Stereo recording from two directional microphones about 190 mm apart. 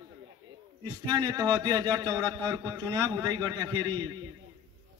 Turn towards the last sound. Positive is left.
turn(degrees=-20)  # may be behind; listen again after turning